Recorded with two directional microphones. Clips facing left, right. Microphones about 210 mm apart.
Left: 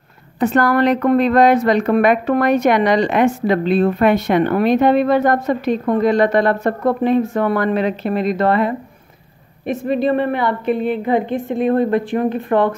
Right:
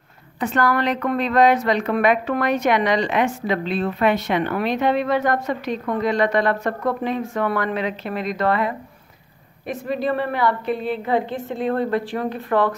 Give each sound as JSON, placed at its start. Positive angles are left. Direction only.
{"t": 0.4, "sound": "a woman's voice", "side_deg": 45}
{"t": 6.8, "sound": "a woman's voice", "side_deg": 30}
{"t": 7.2, "sound": "speech", "side_deg": 40}
{"t": 8.4, "sound": "a woman's voice", "side_deg": 25}
{"t": 9.8, "sound": "a woman's voice", "side_deg": 20}